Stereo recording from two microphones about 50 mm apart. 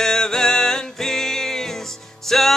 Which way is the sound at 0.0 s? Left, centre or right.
Centre.